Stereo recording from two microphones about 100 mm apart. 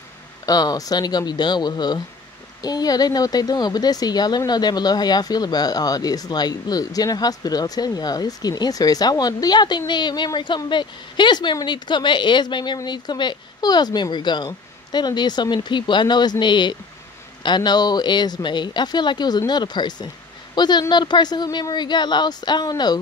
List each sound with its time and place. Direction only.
0.5 s a woman's voice: 40° left (ahead or behind)